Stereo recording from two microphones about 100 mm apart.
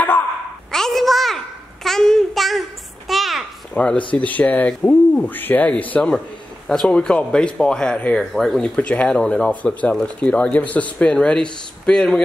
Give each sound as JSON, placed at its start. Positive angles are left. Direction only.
{"t": 0.7, "sound": "a sound", "side_deg": 5}
{"t": 3.1, "sound": "babbling", "side_deg": 0}
{"t": 3.7, "sound": "speech", "side_deg": 10}